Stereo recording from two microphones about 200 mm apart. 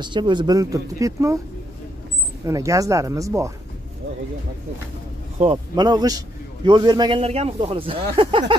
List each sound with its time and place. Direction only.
0.0 s speech: 20° right (ahead or behind)
2.4 s speech: 15° right (ahead or behind)
5.4 s a man's voice: 25° right (ahead or behind)